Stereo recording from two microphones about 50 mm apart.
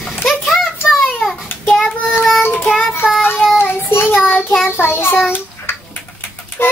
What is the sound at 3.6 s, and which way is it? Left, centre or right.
Child singing, left.